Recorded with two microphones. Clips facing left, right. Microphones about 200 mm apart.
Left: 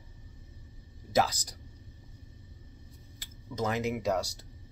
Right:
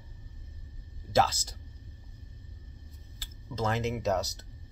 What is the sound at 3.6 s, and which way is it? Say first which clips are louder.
Speech: even; 10° left (ahead or behind).